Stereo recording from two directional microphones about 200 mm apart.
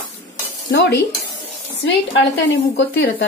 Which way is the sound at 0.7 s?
60° left (ahead or behind).